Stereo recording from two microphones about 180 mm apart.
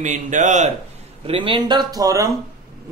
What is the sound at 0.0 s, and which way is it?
Speech, 45° right (ahead or behind).